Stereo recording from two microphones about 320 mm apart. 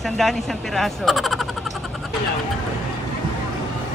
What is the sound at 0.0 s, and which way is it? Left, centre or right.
Speech, centre.